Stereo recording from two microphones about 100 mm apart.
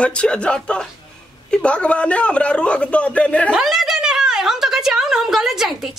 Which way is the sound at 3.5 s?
5° right (ahead or behind).